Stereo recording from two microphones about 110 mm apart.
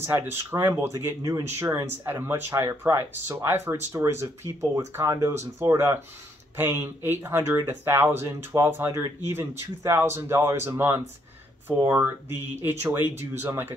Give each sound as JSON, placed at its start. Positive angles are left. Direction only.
{"t": 0.0, "sound": "speech", "side_deg": -20}